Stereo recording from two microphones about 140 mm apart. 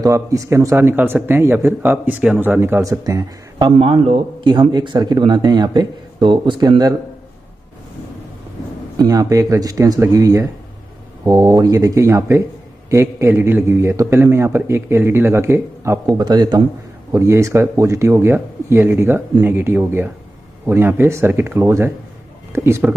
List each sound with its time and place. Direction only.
0.0 s speech: 20° right (ahead or behind)
3.7 s a man's voice: 45° right (ahead or behind); by 7.0 s 30° right (ahead or behind)
8.9 s a man's voice: 25° right (ahead or behind)
16.2 s a man's voice: 30° right (ahead or behind)